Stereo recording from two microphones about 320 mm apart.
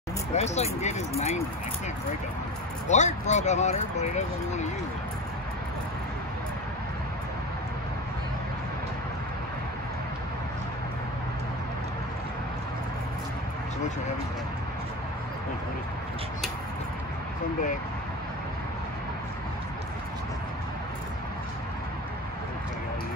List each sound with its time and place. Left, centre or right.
0.3 s speech: centre
2.9 s speech: left